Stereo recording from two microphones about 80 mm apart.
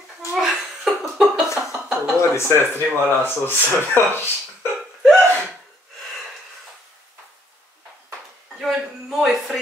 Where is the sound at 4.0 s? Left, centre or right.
Left.